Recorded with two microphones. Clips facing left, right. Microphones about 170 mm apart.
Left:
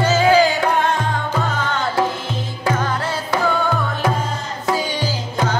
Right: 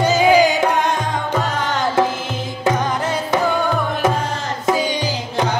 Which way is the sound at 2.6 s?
20° right (ahead or behind).